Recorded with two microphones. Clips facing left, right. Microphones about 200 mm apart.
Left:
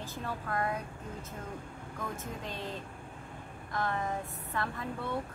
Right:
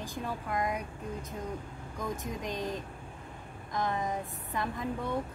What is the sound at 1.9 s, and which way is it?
A woman's voice, 15° right (ahead or behind).